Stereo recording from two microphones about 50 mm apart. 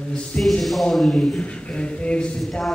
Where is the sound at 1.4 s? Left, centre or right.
Left.